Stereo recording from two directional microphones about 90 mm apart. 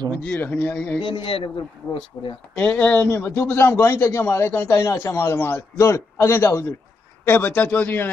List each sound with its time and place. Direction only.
0.4 s speech: 20° left (ahead or behind)
1.0 s a man's voice: 80° left
2.1 s speech: 50° left (ahead or behind)
2.5 s a man's voice: 15° left (ahead or behind)